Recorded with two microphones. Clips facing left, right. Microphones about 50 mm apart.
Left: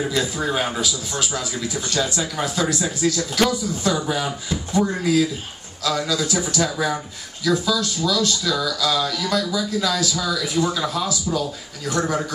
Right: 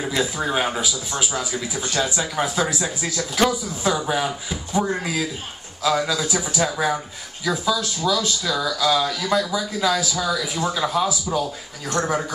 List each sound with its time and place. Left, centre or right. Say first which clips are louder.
0.1 s speech: even; centre